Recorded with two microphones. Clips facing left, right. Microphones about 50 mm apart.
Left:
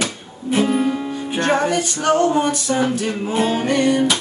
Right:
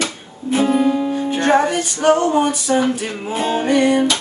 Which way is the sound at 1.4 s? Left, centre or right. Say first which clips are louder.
Right 2 dB; right.